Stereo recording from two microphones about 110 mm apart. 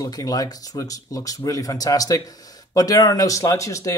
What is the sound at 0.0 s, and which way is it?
Speech, 35° left (ahead or behind).